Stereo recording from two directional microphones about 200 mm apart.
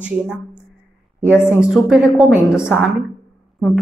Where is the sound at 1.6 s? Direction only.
5° right (ahead or behind).